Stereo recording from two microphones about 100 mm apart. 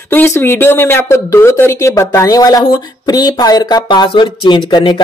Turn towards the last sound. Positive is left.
turn(degrees=50)  # may be behind; listen again after turning